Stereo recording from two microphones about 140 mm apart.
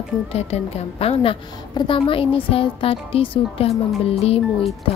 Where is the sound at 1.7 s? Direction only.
35° left (ahead or behind).